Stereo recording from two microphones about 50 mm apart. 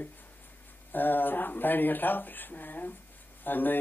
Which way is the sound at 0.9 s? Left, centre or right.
Left.